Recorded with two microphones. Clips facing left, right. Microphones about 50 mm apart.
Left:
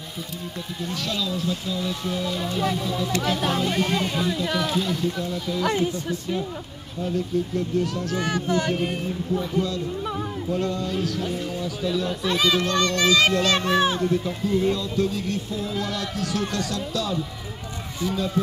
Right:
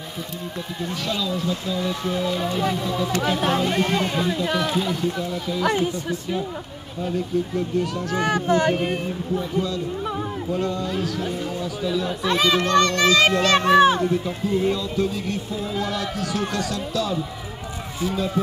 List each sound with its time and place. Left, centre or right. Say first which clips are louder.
1.0 s speech: right 2 dB; centre
1.5 s speech: right 2 dB; centre
5.0 s speech: right 1 dB; right
7.5 s speech: right 1 dB; right
9.3 s speech: even; centre
10.5 s speech: right 1 dB; right
11.8 s speech: right 1 dB; centre
12.8 s a child's voice: right 2 dB; centre
13.1 s speech: right 2 dB; right